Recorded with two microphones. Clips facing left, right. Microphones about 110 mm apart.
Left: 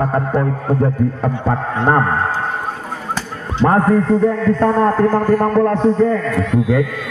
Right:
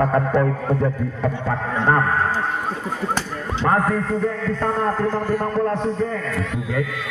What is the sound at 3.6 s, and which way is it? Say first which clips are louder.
Speech: left 5 dB; 40° left (ahead or behind).